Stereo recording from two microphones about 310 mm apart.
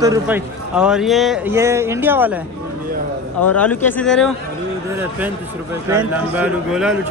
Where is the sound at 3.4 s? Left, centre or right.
Centre.